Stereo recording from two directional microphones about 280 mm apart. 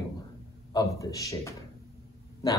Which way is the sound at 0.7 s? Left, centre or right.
Centre.